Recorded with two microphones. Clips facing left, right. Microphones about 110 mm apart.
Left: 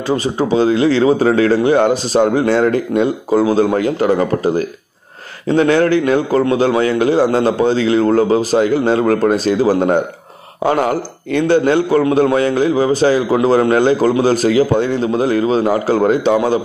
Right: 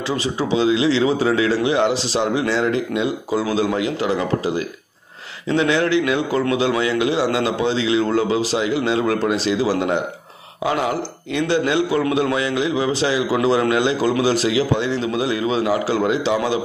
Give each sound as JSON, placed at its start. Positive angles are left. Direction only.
{"t": 0.1, "sound": "a man's voice", "side_deg": 45}